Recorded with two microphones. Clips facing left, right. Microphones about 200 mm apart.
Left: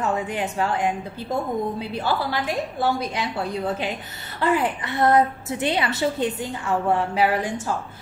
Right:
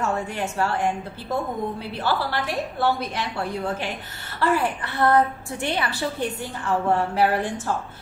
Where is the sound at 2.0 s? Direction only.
15° left (ahead or behind).